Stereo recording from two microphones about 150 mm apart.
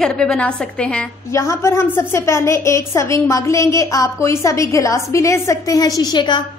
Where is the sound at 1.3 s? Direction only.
20° left (ahead or behind).